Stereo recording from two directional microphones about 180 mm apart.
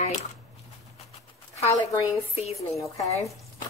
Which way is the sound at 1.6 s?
15° left (ahead or behind).